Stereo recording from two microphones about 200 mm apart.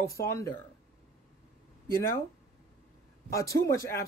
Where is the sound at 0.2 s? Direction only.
15° left (ahead or behind).